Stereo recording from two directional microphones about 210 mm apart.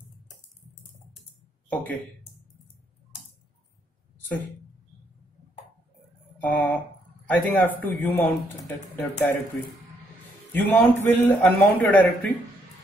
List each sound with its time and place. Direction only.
1.7 s speech: 5° left (ahead or behind)
6.4 s speech: centre (ahead or behind)
10.5 s speech: 10° left (ahead or behind)